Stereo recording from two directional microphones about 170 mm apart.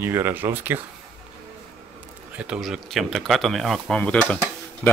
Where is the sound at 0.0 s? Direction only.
15° right (ahead or behind).